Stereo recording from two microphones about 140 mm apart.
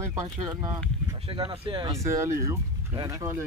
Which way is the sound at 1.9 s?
20° right (ahead or behind).